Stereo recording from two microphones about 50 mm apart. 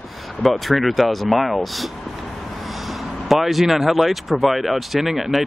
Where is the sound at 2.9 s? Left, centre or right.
Centre.